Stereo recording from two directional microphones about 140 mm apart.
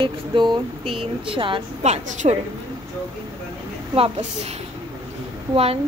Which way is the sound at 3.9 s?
45° right (ahead or behind).